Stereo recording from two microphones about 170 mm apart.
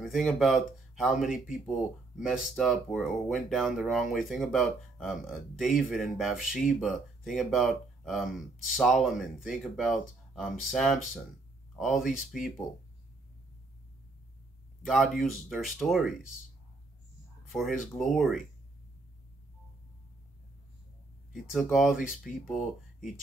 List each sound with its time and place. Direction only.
0.0 s speech: centre (ahead or behind)
14.9 s speech: centre (ahead or behind)
17.5 s speech: centre (ahead or behind)
21.3 s speech: centre (ahead or behind)